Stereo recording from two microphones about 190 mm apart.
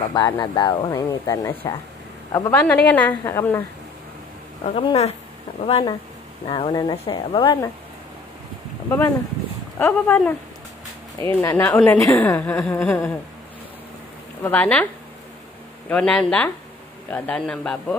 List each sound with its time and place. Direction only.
0.1 s a woman's voice: 20° left (ahead or behind)
4.6 s a woman's voice: 30° left (ahead or behind)
9.8 s a woman's voice: 10° left (ahead or behind)
14.4 s a woman's voice: 10° left (ahead or behind)
15.9 s speech: 5° left (ahead or behind)